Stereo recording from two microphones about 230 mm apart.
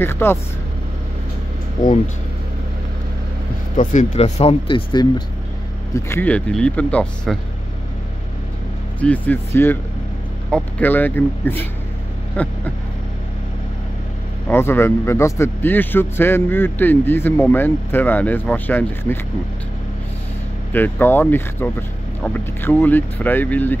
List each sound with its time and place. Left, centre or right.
0.0 s a man's voice: centre
3.7 s speech: left
5.9 s speech: centre
9.0 s a man's voice: centre
14.5 s a man's voice: centre
20.7 s a man's voice: centre